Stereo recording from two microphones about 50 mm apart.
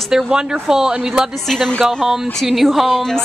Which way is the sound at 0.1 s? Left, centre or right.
Centre.